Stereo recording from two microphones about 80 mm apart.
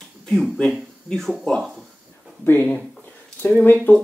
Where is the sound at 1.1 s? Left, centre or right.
Centre.